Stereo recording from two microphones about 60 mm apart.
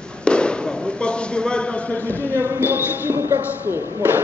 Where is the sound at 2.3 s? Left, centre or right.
Right.